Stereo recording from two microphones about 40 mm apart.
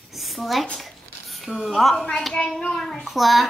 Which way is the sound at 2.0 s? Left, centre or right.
Centre.